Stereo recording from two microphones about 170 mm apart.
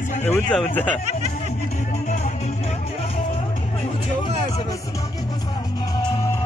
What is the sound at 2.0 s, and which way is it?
Music, 45° left (ahead or behind).